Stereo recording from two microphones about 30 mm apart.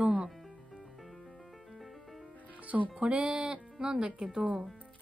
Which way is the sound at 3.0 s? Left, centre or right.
Right.